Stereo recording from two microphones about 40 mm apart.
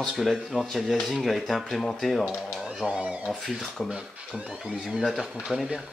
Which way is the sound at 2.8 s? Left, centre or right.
Right.